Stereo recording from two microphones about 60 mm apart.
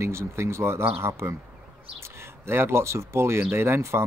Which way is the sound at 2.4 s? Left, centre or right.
Right.